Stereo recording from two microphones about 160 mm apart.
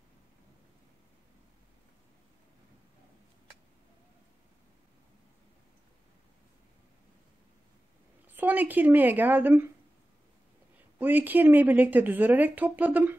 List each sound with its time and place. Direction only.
8.3 s a woman's voice: 10° right (ahead or behind)
11.0 s a woman's voice: 10° right (ahead or behind)